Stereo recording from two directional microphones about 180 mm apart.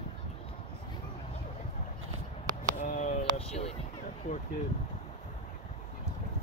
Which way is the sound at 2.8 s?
45° left (ahead or behind).